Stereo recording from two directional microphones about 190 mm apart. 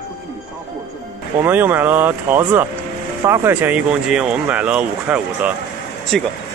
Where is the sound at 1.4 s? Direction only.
10° right (ahead or behind).